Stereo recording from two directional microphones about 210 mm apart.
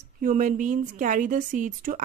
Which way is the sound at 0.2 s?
40° right (ahead or behind).